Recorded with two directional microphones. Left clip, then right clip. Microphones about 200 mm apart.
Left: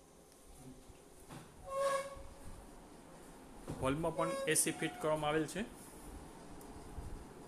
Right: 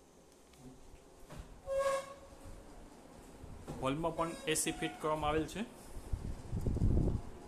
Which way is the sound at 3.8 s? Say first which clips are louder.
Even; 5° right (ahead or behind).